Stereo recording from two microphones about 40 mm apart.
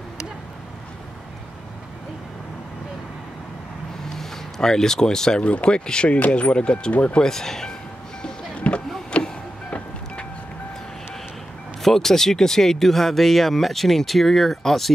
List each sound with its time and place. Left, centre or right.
4.2 s speech: centre
5.4 s speech: left
6.1 s speech: left
7.2 s speech: centre
8.5 s a sound: left
9.1 s music: left
11.8 s speech: centre